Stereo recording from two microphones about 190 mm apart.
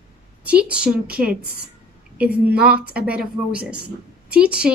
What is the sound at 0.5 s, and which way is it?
A woman's voice, 5° right (ahead or behind).